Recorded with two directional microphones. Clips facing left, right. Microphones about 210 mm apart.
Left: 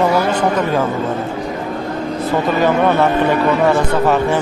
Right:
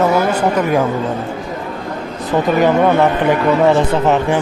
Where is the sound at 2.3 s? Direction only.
15° right (ahead or behind).